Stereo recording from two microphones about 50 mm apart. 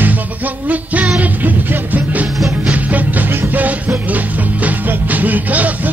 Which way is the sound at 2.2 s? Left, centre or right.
Centre.